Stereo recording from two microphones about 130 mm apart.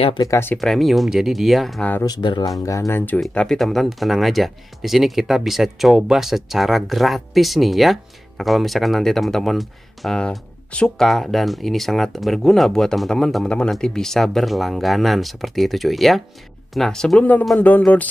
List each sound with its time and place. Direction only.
0.2 s speech: 20° left (ahead or behind)
0.6 s speech: centre (ahead or behind)
2.0 s speech: 35° left (ahead or behind)
2.9 s speech: 15° left (ahead or behind)
3.2 s speech: centre (ahead or behind)